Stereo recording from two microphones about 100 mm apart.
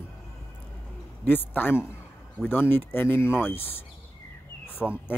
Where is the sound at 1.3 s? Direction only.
20° left (ahead or behind).